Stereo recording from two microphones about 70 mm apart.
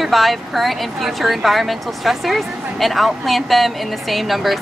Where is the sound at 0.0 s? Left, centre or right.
Centre.